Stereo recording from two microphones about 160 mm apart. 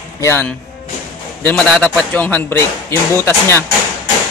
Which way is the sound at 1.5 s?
5° left (ahead or behind).